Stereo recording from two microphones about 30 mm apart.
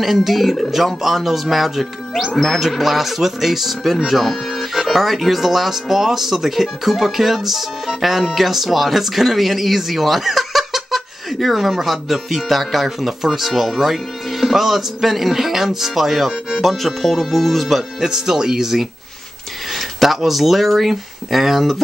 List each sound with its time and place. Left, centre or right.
0.0 s speech: centre
18.0 s speech: centre
20.2 s speech: centre